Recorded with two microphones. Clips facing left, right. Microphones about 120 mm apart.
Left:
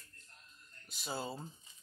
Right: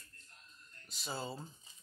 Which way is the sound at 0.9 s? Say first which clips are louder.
Left 1 dB; 5° left (ahead or behind).